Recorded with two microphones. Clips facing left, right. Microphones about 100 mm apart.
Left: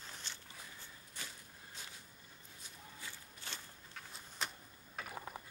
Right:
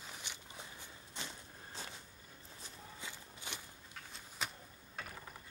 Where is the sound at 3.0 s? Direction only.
15° right (ahead or behind).